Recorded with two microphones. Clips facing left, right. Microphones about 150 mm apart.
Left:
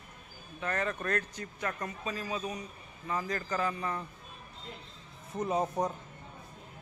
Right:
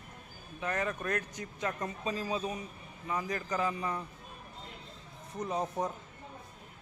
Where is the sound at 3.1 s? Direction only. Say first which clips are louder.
Left 1 dB; 10° right (ahead or behind).